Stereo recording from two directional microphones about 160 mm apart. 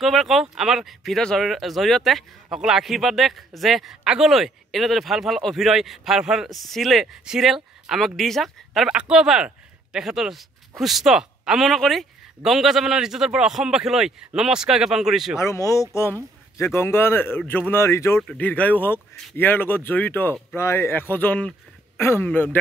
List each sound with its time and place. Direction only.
0.0 s speech: centre (ahead or behind)
15.3 s a man's voice: 20° left (ahead or behind)